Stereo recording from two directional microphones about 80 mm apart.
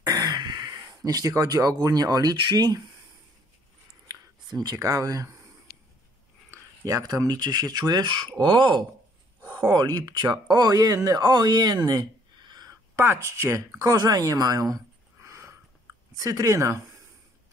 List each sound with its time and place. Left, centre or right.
0.0 s speech: right
4.1 s speech: right
6.5 s speech: right
8.4 s speech: right
9.6 s speech: right
12.9 s speech: right
13.8 s speech: right
15.2 s a sound: right
16.2 s speech: right